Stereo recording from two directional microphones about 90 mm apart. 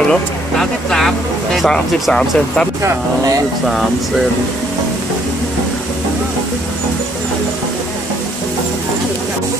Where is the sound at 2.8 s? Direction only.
35° right (ahead or behind).